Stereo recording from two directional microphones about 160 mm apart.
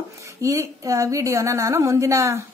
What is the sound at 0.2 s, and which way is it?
A woman's voice, 20° right (ahead or behind).